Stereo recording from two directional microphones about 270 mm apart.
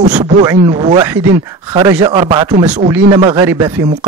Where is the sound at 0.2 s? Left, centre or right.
Centre.